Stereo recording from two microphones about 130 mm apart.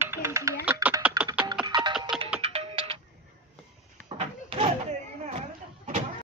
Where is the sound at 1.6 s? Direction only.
35° right (ahead or behind).